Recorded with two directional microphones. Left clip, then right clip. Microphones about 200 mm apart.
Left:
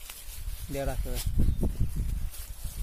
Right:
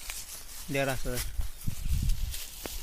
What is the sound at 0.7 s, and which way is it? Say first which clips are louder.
Speech: right 4 dB; 20° right (ahead or behind).